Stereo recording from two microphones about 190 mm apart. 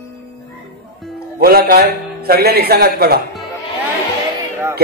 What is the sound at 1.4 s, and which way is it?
A man's voice, 55° right (ahead or behind).